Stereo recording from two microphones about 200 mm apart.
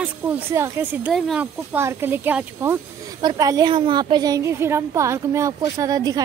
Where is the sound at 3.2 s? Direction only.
20° right (ahead or behind).